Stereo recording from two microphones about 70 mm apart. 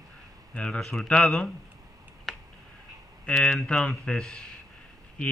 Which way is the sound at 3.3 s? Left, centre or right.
Centre.